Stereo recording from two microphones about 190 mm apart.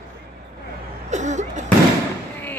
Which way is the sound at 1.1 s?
40° right (ahead or behind).